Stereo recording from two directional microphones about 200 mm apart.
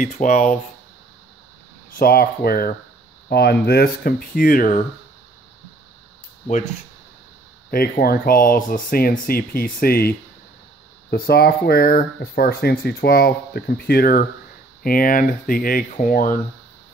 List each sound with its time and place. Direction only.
0.0 s speech: 40° left (ahead or behind)
2.0 s speech: 50° left (ahead or behind)
7.7 s speech: 50° left (ahead or behind)